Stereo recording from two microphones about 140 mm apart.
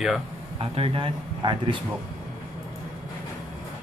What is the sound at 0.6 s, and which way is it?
Speech, 45° right (ahead or behind).